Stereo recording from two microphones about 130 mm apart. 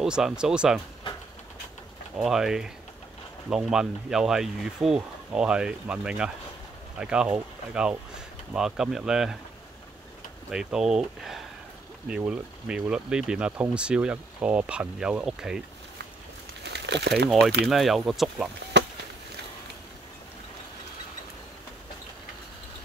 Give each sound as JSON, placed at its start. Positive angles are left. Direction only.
{"t": 0.0, "sound": "speech", "side_deg": -5}
{"t": 2.1, "sound": "speech", "side_deg": -5}
{"t": 10.5, "sound": "speech", "side_deg": -5}
{"t": 17.1, "sound": "speech", "side_deg": 0}